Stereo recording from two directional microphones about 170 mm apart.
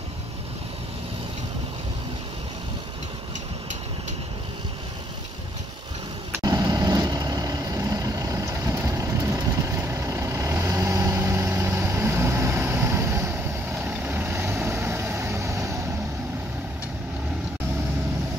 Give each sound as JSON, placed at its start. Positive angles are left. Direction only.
{"t": 6.4, "sound": "vehicle", "side_deg": -25}